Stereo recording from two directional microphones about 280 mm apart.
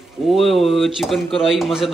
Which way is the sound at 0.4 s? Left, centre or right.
Centre.